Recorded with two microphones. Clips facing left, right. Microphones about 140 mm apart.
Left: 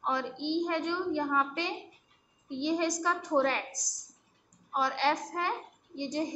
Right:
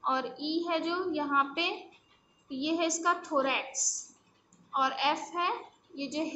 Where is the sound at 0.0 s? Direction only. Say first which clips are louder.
Even; 15° right (ahead or behind).